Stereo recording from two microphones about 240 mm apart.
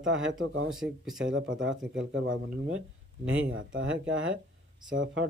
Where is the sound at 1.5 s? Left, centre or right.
Right.